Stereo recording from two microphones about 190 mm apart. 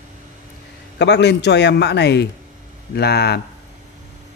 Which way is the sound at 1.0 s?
65° left (ahead or behind).